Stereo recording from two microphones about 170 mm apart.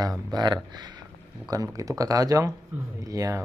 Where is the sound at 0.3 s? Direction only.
25° right (ahead or behind).